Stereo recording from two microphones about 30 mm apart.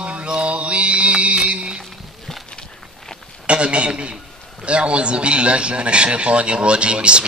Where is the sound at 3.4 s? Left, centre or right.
Right.